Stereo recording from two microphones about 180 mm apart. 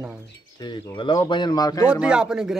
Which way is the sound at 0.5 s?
25° left (ahead or behind).